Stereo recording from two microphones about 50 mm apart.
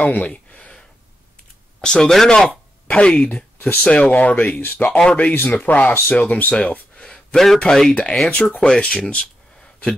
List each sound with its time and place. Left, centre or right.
0.0 s a sound: left
1.8 s speech: centre
2.9 s speech: left
6.5 s a sound: left
7.5 s speech: centre
8.5 s speech: centre